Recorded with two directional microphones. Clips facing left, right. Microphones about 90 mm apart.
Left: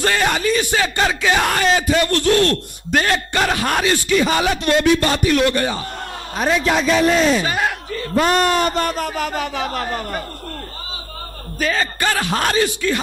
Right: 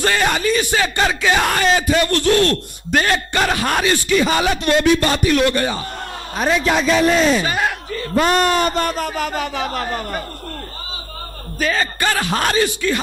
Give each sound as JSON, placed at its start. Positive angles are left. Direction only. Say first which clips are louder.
{"t": 0.0, "sound": "speech", "louder": "even", "side_deg": -15}
{"t": 11.6, "sound": "speech", "louder": "even", "side_deg": -15}